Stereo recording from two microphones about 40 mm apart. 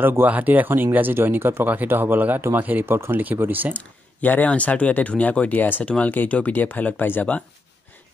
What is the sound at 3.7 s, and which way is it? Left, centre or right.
Speech, left.